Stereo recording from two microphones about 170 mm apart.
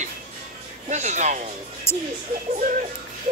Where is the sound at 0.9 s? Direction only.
45° right (ahead or behind).